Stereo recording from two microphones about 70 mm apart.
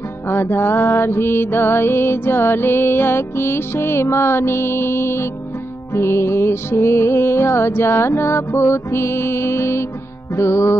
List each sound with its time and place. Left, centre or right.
0.3 s music: left